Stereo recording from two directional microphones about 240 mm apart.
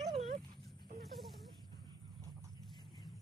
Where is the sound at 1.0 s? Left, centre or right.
Centre.